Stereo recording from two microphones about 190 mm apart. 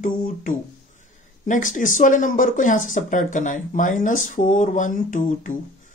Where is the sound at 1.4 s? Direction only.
45° left (ahead or behind).